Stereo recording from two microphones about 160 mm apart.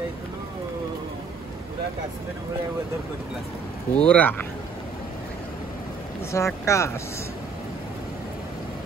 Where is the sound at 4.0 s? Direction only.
10° left (ahead or behind).